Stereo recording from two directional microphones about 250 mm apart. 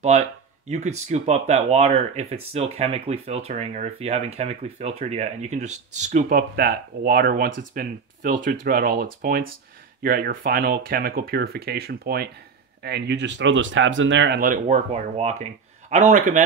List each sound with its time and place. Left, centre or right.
0.7 s speech: right